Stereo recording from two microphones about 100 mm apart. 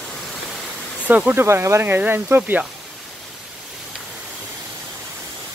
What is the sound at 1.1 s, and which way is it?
Speech, 15° right (ahead or behind).